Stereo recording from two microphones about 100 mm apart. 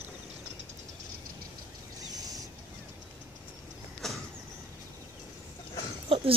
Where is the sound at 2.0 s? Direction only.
40° right (ahead or behind).